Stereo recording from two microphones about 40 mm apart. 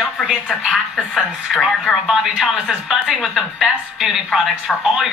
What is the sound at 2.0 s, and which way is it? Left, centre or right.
A woman's voice, centre.